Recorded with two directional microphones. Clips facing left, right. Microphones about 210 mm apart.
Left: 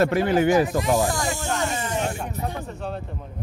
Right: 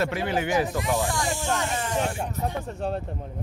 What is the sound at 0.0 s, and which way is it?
Speech, 45° left (ahead or behind).